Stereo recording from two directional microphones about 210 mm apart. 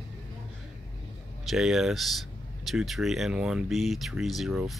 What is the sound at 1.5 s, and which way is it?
Speech, centre (ahead or behind).